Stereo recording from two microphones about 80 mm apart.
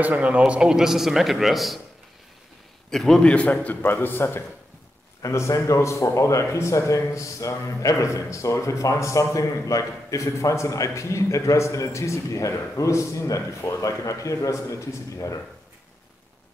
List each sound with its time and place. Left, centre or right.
0.0 s a man's voice: centre
2.9 s a man's voice: centre
3.6 s speech: left